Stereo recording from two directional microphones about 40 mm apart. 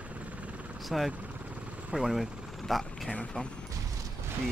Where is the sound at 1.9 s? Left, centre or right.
Centre.